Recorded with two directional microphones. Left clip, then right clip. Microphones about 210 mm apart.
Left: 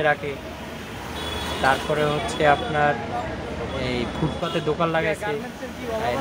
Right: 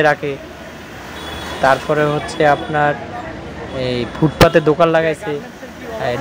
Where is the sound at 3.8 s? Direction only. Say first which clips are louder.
Right 10 dB; 25° right (ahead or behind).